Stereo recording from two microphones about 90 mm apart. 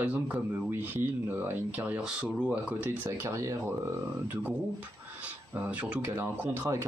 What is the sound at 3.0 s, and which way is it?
Speech, 35° right (ahead or behind).